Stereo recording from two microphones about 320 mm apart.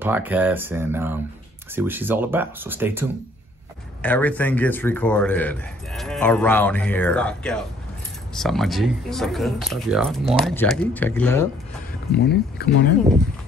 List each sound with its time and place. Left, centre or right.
0.0 s speech: centre
4.0 s speech: centre
12.1 s speech: left